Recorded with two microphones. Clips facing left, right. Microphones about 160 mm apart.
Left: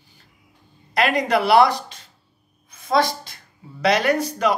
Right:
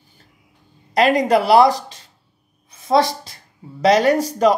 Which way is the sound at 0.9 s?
40° right (ahead or behind).